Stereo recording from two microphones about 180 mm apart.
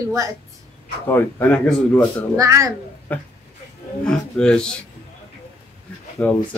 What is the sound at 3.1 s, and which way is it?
A woman's voice, 10° left (ahead or behind).